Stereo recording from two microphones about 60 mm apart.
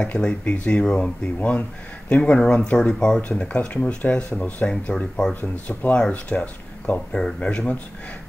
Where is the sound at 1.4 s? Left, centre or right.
Left.